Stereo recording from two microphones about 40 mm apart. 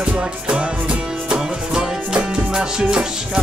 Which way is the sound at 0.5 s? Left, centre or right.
Right.